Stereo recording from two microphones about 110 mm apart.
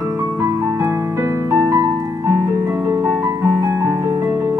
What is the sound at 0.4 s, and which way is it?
Music, 25° right (ahead or behind).